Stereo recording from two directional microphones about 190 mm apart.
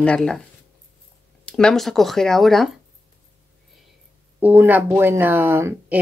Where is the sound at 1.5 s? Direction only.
5° left (ahead or behind).